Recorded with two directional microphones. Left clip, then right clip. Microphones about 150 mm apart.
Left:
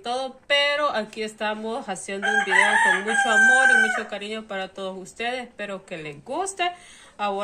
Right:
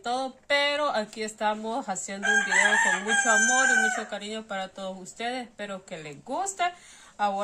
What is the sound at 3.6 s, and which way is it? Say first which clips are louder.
Speech: left 5 dB; 30° right (ahead or behind).